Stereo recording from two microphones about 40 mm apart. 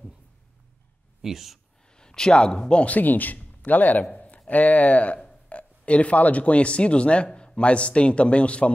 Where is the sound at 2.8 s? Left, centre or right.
Left.